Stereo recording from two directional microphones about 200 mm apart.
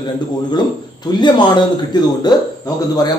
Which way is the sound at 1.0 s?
20° left (ahead or behind).